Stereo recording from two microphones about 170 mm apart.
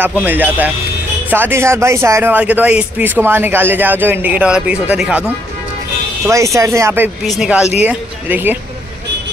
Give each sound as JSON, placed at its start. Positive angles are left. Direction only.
{"t": 0.0, "sound": "a man's voice", "side_deg": -10}
{"t": 6.2, "sound": "a man's voice", "side_deg": -20}
{"t": 7.2, "sound": "a man's voice", "side_deg": -5}